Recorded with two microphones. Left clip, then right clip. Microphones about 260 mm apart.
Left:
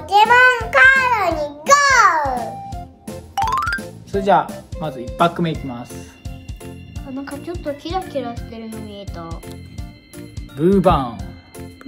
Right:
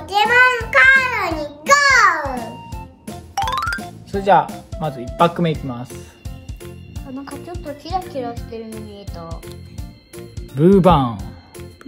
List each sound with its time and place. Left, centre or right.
0.0 s child singing: centre
2.2 s music: centre
4.1 s music: right
4.8 s speech: right
7.2 s a child's voice: centre
10.6 s speech: right